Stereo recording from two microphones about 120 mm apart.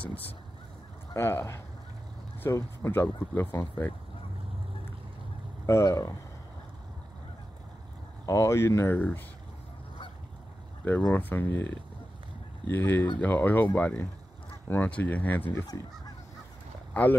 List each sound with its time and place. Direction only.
1.1 s speech: 20° left (ahead or behind)
5.7 s speech: 25° left (ahead or behind)
8.3 s speech: 25° left (ahead or behind)
11.0 s speech: 15° left (ahead or behind)
16.9 s speech: 15° left (ahead or behind)